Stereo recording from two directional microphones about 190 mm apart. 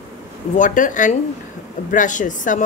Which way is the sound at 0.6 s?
45° left (ahead or behind).